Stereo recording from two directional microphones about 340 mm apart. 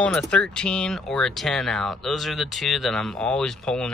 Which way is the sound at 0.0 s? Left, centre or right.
Centre.